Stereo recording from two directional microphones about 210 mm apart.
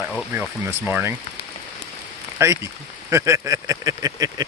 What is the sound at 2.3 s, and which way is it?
Speech, 15° right (ahead or behind).